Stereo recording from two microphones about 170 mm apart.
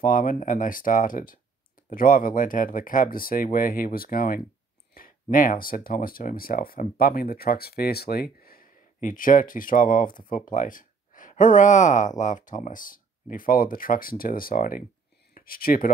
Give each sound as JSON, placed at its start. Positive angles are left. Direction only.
{"t": 0.0, "sound": "speech", "side_deg": 50}